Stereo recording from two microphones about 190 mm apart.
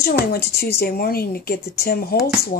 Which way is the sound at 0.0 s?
55° left (ahead or behind).